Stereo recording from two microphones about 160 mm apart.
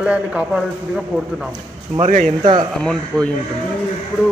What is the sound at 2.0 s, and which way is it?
Speech, 45° right (ahead or behind).